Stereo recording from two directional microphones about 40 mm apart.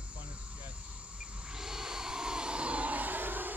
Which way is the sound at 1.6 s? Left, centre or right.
Centre.